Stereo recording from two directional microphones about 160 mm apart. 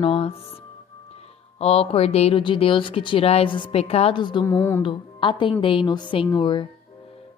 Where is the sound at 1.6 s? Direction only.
40° left (ahead or behind).